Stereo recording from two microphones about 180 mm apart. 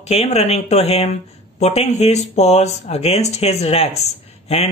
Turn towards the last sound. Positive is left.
turn(degrees=35)  # may be behind; listen again after turning